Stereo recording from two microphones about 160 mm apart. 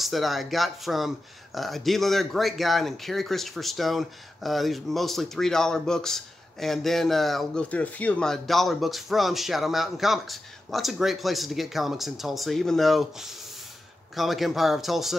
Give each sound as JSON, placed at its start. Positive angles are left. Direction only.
{"t": 0.0, "sound": "speech", "side_deg": 0}